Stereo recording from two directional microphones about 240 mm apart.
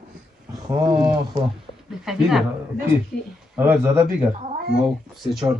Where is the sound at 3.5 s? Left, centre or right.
Centre.